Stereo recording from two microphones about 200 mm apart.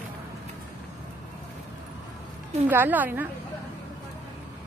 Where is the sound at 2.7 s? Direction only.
10° right (ahead or behind).